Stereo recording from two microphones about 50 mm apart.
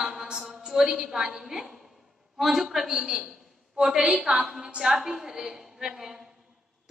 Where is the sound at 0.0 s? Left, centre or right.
Centre.